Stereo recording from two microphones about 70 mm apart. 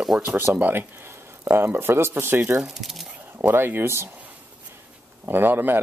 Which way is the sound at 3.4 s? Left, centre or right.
Right.